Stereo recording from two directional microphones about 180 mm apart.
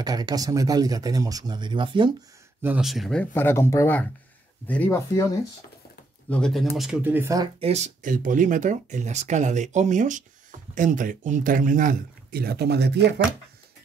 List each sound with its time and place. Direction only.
0.0 s speech: 20° right (ahead or behind)
2.6 s speech: 5° right (ahead or behind); by 5.2 s 15° left (ahead or behind)
6.3 s speech: centre (ahead or behind); by 7.4 s 15° right (ahead or behind)
7.6 s speech: 40° right (ahead or behind); by 13.0 s 65° right (ahead or behind)